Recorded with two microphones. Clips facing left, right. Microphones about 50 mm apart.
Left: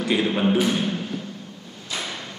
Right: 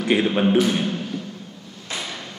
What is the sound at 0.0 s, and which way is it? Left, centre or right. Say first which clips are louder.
Speech: right 3 dB; right.